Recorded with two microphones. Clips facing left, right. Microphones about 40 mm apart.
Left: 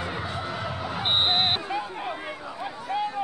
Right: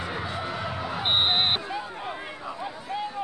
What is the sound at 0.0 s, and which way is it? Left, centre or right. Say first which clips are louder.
Basketball bounce: even; centre.